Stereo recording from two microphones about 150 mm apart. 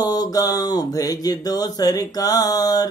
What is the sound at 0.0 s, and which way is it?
A man's voice, 25° left (ahead or behind).